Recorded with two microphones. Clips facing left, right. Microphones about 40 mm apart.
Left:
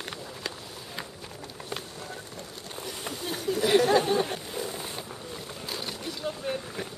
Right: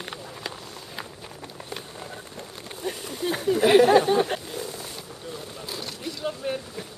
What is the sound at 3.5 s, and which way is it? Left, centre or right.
Speech, right.